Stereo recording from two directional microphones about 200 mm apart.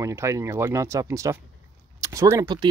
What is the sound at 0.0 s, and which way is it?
Speech, 15° right (ahead or behind).